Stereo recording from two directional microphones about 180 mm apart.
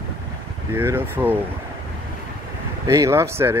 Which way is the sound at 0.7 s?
10° right (ahead or behind).